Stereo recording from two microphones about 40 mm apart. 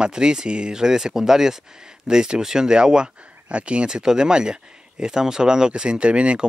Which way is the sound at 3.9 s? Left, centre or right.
Centre.